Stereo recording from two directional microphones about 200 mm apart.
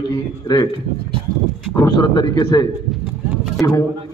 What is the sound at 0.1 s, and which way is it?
Speech, 20° left (ahead or behind).